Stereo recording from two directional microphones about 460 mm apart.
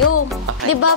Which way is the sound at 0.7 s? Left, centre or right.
Left.